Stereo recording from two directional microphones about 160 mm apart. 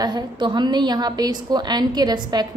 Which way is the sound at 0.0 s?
30° right (ahead or behind).